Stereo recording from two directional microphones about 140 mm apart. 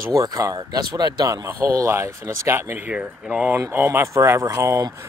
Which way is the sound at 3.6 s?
20° right (ahead or behind).